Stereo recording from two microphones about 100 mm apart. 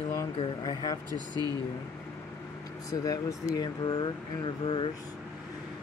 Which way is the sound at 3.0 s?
35° left (ahead or behind).